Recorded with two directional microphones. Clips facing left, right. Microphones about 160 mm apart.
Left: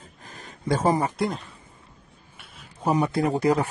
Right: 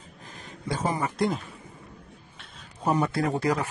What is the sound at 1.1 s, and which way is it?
Speech, centre (ahead or behind).